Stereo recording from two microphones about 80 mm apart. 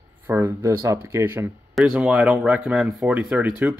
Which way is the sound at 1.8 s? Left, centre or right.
Centre.